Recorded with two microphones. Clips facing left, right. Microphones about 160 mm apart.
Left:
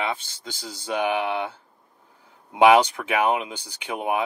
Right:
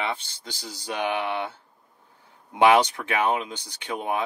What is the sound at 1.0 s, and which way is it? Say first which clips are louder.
Speech: left 1 dB; 10° left (ahead or behind).